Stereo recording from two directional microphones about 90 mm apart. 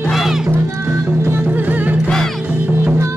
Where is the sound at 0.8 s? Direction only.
30° right (ahead or behind).